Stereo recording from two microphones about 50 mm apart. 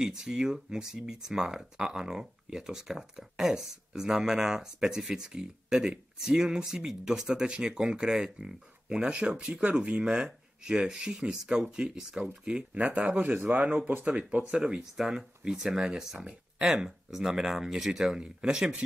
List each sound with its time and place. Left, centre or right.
0.0 s speech: centre
14.5 s speech: centre